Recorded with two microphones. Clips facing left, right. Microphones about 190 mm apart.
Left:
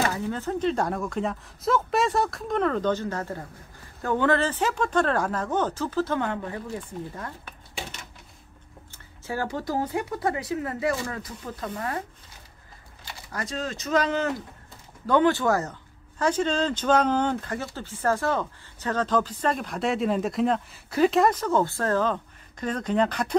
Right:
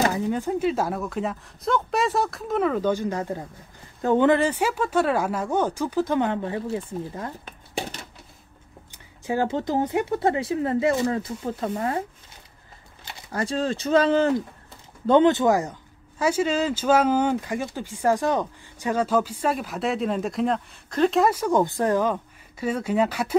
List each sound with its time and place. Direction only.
0.1 s speech: 15° right (ahead or behind)
8.9 s speech: 15° right (ahead or behind)
13.0 s speech: 30° right (ahead or behind); by 21.3 s 5° left (ahead or behind)
21.3 s speech: 10° right (ahead or behind)